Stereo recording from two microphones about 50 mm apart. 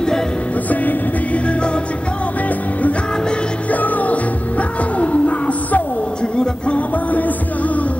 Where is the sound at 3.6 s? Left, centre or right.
Left.